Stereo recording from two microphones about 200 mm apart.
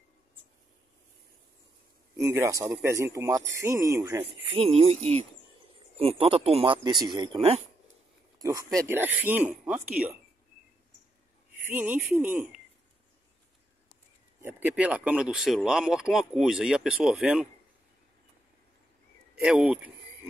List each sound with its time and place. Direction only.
2.1 s speech: 15° right (ahead or behind)
4.5 s speech: 30° right (ahead or behind)
5.9 s speech: 30° right (ahead or behind)
8.4 s speech: 15° right (ahead or behind)
11.6 s speech: 10° right (ahead or behind)
14.4 s speech: 5° right (ahead or behind)
19.4 s speech: 5° right (ahead or behind)